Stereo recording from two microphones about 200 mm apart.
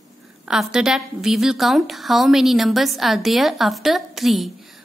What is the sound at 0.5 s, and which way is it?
A woman's voice, 5° right (ahead or behind).